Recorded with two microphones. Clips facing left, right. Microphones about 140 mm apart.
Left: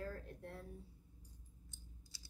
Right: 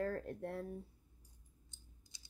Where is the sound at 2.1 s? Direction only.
20° right (ahead or behind).